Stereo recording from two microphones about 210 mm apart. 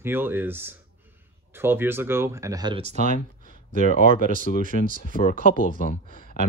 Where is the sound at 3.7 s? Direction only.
40° left (ahead or behind).